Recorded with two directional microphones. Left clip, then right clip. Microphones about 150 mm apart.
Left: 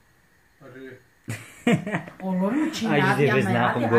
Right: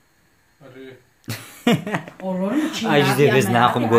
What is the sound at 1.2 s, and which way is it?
Speech, 20° right (ahead or behind).